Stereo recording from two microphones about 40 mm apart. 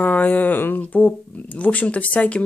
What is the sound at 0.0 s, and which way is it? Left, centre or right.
Speech, left.